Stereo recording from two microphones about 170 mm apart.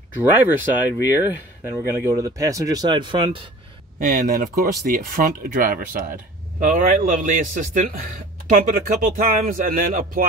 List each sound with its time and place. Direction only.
0.2 s speech: 10° right (ahead or behind); by 3.4 s 30° right (ahead or behind)
4.0 s a man's voice: 50° right (ahead or behind)